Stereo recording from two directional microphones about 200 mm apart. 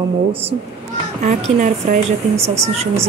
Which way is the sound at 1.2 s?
35° right (ahead or behind).